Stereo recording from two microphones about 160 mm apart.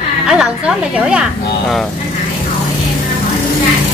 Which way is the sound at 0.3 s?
5° right (ahead or behind).